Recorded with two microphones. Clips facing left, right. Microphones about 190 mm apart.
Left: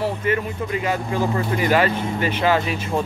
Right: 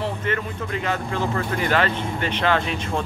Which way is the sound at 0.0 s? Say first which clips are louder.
Left 4 dB; 10° left (ahead or behind).